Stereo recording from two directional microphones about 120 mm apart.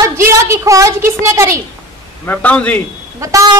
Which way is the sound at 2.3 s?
10° left (ahead or behind).